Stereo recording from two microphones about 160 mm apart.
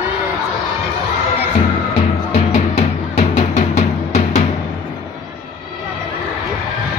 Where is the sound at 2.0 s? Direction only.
45° left (ahead or behind).